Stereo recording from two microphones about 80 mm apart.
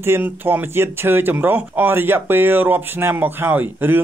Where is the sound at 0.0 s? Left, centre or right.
Right.